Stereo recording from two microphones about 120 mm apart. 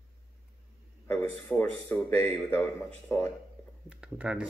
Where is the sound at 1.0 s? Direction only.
20° left (ahead or behind).